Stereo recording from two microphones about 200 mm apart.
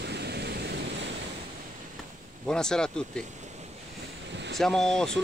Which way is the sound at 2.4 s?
5° left (ahead or behind).